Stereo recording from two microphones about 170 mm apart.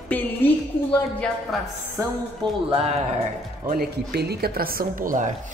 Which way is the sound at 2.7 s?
35° right (ahead or behind).